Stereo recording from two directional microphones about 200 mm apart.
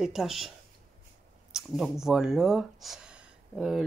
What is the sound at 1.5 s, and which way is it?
Speech, centre (ahead or behind).